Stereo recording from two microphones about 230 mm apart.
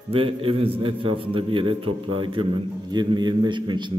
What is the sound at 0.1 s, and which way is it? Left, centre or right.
A man's voice, right.